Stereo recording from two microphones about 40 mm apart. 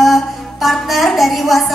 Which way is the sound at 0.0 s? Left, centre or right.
Centre.